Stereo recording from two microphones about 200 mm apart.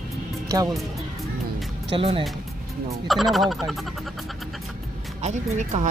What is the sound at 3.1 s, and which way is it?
Speech, centre (ahead or behind).